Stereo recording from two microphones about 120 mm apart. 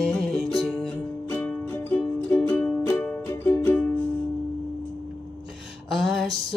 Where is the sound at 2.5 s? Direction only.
15° left (ahead or behind).